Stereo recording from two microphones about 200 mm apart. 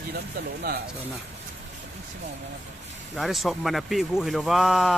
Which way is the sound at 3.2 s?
Centre (ahead or behind).